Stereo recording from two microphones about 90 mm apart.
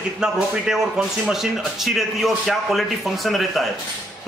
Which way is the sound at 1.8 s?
Centre (ahead or behind).